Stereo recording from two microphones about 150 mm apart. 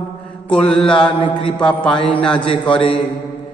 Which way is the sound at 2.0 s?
5° left (ahead or behind).